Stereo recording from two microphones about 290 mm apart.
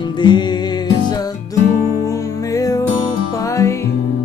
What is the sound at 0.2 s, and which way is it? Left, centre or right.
Music, centre.